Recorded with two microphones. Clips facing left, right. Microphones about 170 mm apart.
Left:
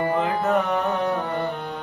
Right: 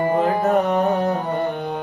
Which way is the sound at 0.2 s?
40° right (ahead or behind).